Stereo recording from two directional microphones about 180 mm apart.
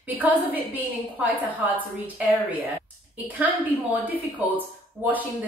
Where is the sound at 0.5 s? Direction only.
10° right (ahead or behind).